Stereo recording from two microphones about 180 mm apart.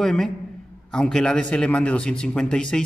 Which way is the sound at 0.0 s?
Centre (ahead or behind).